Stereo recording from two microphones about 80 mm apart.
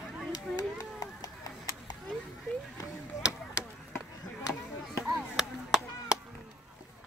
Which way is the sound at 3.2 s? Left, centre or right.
Centre.